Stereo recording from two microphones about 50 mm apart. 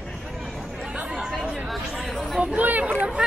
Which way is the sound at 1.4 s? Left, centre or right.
Centre.